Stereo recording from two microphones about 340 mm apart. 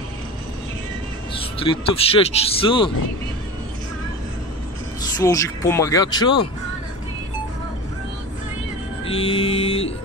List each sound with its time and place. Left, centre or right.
1.4 s speech: centre
5.2 s speech: centre
9.0 s speech: centre